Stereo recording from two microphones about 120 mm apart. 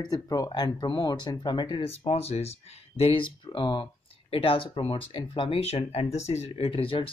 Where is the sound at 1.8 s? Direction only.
55° left (ahead or behind).